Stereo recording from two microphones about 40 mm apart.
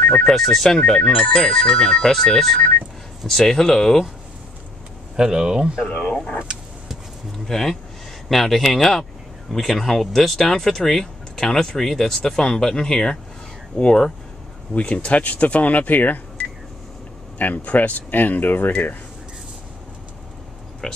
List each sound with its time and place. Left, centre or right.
0.0 s speech: left
0.3 s speech: centre
0.7 s speech: left
1.1 s speech: left
2.3 s speech: centre
5.1 s speech: centre
5.9 s speech: left
7.4 s speech: centre
14.7 s speech: left
17.4 s speech: left
20.8 s speech: centre